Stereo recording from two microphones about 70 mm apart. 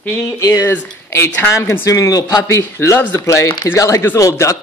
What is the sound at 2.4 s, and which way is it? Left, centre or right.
Speech, left.